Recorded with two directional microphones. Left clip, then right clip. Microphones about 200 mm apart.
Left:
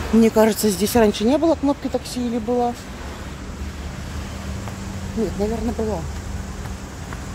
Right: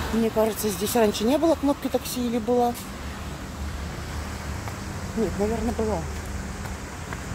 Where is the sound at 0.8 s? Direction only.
25° left (ahead or behind); by 2.7 s 10° left (ahead or behind).